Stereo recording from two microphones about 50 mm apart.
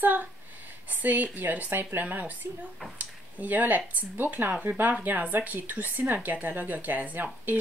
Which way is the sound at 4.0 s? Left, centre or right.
Right.